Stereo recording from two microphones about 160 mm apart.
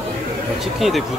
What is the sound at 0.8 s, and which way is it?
Speech, centre (ahead or behind).